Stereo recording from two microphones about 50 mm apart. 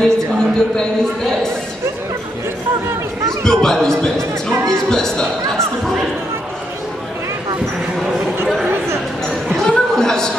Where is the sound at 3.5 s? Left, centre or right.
Centre.